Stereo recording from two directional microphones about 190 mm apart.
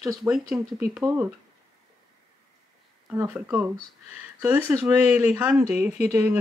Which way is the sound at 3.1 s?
10° right (ahead or behind).